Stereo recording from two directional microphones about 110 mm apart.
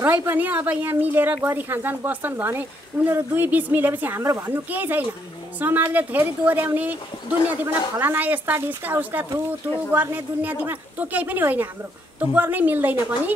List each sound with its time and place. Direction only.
0.0 s speech: 15° right (ahead or behind)